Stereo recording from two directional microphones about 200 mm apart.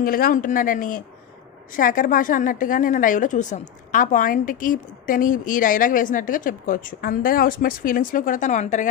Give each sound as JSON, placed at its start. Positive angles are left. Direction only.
{"t": 0.0, "sound": "a woman's voice", "side_deg": 45}